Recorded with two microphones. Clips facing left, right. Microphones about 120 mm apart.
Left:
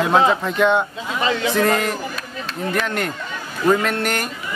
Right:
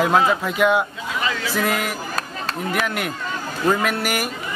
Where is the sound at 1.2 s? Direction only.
30° left (ahead or behind).